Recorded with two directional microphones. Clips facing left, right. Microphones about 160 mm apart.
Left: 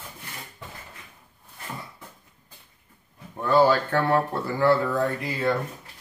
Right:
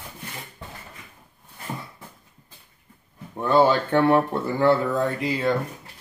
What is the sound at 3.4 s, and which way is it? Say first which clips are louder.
Speech: right 1 dB; 20° right (ahead or behind).